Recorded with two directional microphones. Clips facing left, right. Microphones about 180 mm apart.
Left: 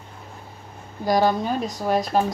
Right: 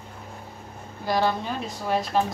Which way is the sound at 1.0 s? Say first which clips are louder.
Left 4 dB; 40° left (ahead or behind).